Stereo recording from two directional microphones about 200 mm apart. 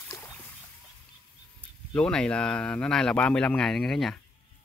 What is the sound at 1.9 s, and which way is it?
Speech, 5° left (ahead or behind).